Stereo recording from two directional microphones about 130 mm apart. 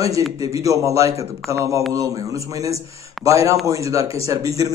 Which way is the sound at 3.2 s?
25° right (ahead or behind).